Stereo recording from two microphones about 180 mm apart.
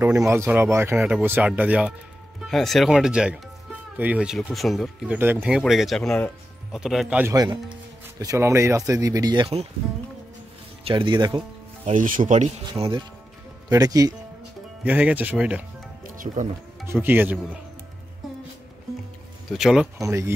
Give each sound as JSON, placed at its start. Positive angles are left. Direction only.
{"t": 0.3, "sound": "speech", "side_deg": -10}
{"t": 8.2, "sound": "speech", "side_deg": -15}
{"t": 10.8, "sound": "speech", "side_deg": -30}
{"t": 11.8, "sound": "speech", "side_deg": -45}
{"t": 13.7, "sound": "speech", "side_deg": -20}
{"t": 14.9, "sound": "speech", "side_deg": -10}
{"t": 16.2, "sound": "speech", "side_deg": -30}
{"t": 16.8, "sound": "speech", "side_deg": -10}
{"t": 19.5, "sound": "speech", "side_deg": -5}
{"t": 20.0, "sound": "speech", "side_deg": -15}